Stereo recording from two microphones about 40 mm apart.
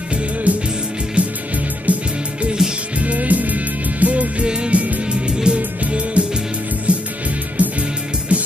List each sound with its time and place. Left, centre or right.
0.1 s music: right
2.4 s music: centre
3.0 s music: right
4.5 s music: right
4.7 s music: right
5.0 s music: right